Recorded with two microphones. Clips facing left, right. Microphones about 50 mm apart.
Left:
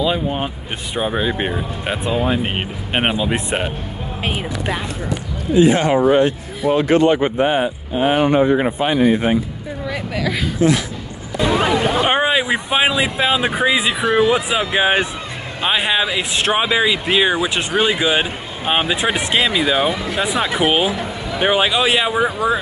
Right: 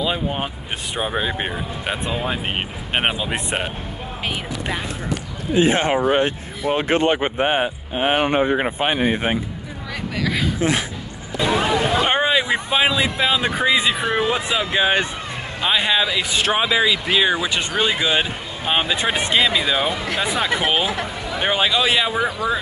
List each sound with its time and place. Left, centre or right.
0.0 s speech: centre
5.5 s speech: right
9.8 s a woman's voice: centre
11.4 s a sound: left
12.1 s speech: centre
12.5 s speech: left
13.9 s speech: left
15.6 s speech: centre